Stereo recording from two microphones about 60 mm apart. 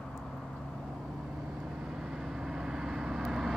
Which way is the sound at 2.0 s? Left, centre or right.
Centre.